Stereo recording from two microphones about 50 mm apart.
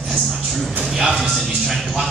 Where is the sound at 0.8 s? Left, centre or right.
Centre.